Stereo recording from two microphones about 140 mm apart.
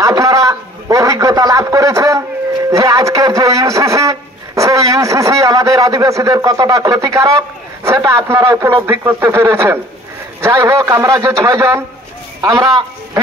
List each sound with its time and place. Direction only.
0.0 s a man's voice: 25° right (ahead or behind)